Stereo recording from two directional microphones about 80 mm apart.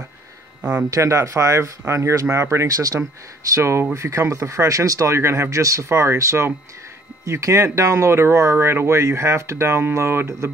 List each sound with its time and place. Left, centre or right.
0.6 s a man's voice: centre
0.8 s speech: right
3.5 s speech: right